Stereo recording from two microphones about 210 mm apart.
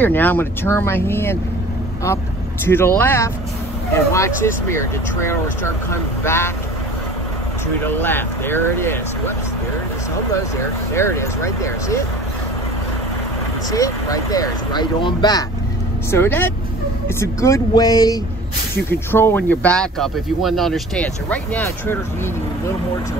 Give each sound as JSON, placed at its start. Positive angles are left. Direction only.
{"t": 0.0, "sound": "speech", "side_deg": 10}
{"t": 2.6, "sound": "speech", "side_deg": 10}
{"t": 7.8, "sound": "speech", "side_deg": 10}
{"t": 10.3, "sound": "speech", "side_deg": 15}
{"t": 13.7, "sound": "speech", "side_deg": 15}